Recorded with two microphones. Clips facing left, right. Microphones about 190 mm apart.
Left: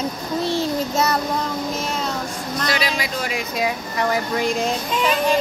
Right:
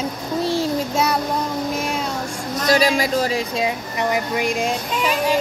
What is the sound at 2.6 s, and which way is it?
Speech, 45° right (ahead or behind).